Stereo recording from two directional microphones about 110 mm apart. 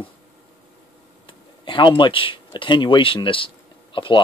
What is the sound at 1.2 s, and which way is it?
Speech, 50° left (ahead or behind).